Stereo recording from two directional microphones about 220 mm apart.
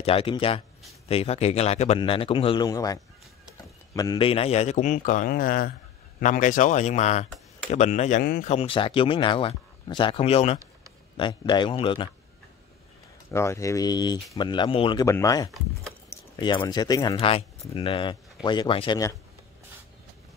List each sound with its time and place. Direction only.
0.0 s a man's voice: 25° left (ahead or behind)
8.2 s speech: 45° left (ahead or behind)
8.5 s speech: 25° left (ahead or behind)
13.3 s speech: 10° left (ahead or behind)